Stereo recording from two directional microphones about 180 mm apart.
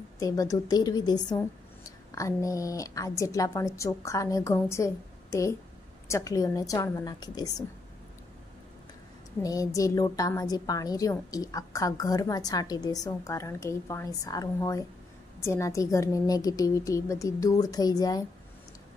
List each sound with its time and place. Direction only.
0.2 s a woman's voice: 20° left (ahead or behind)
9.4 s a woman's voice: 20° left (ahead or behind)